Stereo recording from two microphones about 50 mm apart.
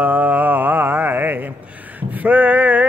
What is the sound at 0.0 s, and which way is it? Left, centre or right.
Mantra, right.